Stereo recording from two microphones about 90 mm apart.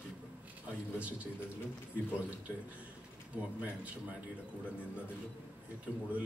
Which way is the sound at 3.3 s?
15° right (ahead or behind).